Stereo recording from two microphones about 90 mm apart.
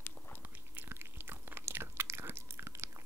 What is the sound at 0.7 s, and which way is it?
Chewing, 25° right (ahead or behind).